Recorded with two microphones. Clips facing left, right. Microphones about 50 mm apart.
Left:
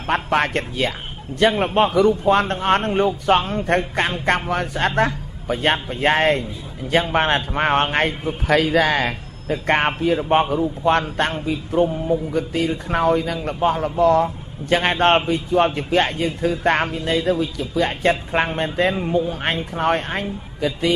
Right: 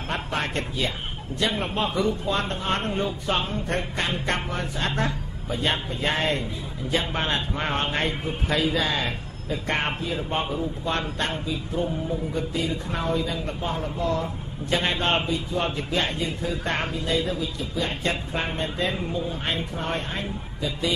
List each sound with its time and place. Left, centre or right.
0.1 s a man's voice: left
10.8 s a man's voice: left
11.4 s a man's voice: left